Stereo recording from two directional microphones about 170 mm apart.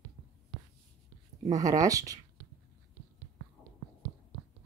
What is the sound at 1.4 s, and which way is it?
Speech, 20° right (ahead or behind).